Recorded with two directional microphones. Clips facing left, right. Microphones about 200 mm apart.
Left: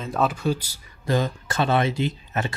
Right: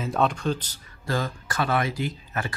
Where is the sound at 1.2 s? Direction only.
25° left (ahead or behind).